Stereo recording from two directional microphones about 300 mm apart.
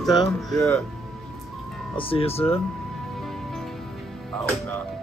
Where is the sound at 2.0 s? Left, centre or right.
Centre.